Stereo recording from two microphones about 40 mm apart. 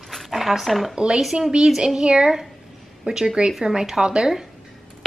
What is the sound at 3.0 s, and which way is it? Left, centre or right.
Speech, centre.